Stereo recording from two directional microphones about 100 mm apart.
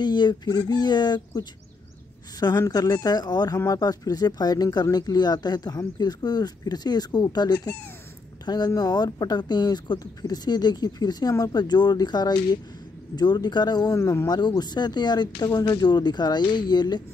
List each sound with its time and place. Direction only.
0.0 s speech: 45° left (ahead or behind)
2.7 s speech: 40° left (ahead or behind)
13.9 s speech: 30° left (ahead or behind)
14.6 s speech: 45° left (ahead or behind)